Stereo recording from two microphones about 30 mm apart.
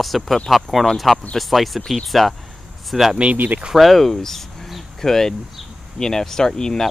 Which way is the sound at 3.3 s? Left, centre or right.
Right.